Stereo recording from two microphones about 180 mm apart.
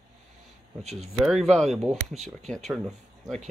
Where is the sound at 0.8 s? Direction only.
35° right (ahead or behind).